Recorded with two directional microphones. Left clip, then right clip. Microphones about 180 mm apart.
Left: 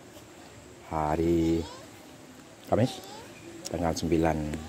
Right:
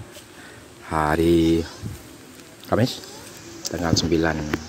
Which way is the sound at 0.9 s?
10° right (ahead or behind).